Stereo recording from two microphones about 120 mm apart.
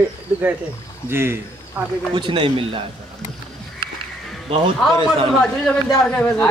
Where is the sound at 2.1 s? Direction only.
45° right (ahead or behind).